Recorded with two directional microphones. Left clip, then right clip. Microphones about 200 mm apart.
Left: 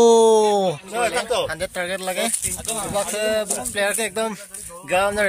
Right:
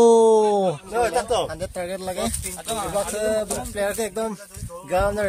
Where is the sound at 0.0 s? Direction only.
5° right (ahead or behind).